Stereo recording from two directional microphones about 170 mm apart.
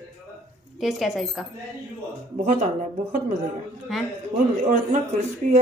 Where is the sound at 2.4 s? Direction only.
45° right (ahead or behind).